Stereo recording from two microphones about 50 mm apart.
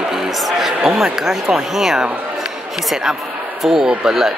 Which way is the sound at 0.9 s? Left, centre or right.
Centre.